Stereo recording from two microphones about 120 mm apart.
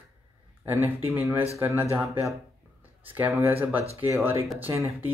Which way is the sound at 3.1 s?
15° right (ahead or behind).